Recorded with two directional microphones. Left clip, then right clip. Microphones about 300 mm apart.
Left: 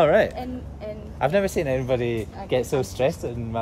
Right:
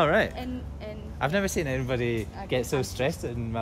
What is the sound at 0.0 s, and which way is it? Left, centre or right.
Speech, centre.